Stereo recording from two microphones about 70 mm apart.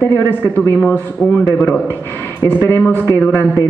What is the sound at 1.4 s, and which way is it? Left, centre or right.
A man's voice, left.